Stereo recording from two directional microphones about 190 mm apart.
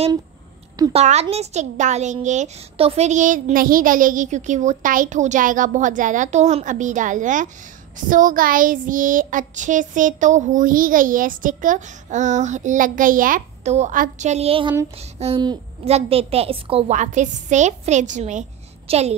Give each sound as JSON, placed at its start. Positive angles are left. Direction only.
{"t": 0.9, "sound": "a child's voice", "side_deg": -35}
{"t": 8.1, "sound": "child singing", "side_deg": -45}
{"t": 15.0, "sound": "a child's voice", "side_deg": -35}